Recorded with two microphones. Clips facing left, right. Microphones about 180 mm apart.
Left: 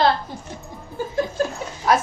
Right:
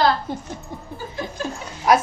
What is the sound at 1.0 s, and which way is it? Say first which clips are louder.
Chuckle: left 11 dB; 50° left (ahead or behind).